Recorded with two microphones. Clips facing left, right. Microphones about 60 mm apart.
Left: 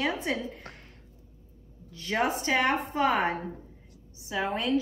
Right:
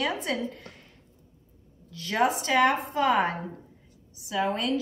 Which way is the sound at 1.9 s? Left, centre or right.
Centre.